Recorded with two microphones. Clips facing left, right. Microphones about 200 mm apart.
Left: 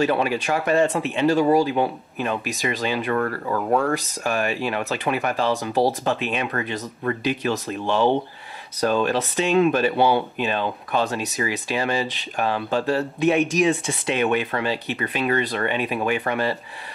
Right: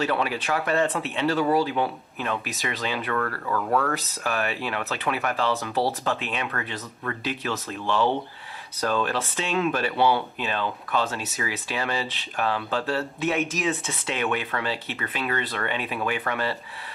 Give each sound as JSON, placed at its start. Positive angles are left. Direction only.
{"t": 0.0, "sound": "speech", "side_deg": 15}
{"t": 3.9, "sound": "speech", "side_deg": 15}